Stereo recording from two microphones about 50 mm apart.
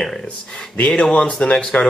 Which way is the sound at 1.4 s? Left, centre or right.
Left.